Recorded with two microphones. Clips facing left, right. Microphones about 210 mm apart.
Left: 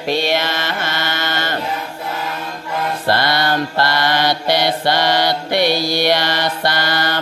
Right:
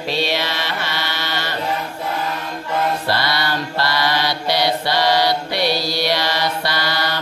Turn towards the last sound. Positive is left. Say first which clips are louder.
# left 3 dB
turn(degrees=50)  # may be behind; listen again after turning